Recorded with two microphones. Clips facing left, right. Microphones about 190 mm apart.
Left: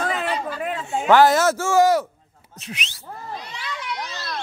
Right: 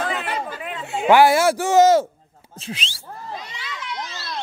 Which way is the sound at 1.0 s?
10° right (ahead or behind).